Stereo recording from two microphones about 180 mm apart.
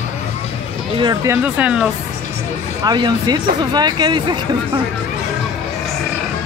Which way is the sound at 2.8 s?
25° right (ahead or behind).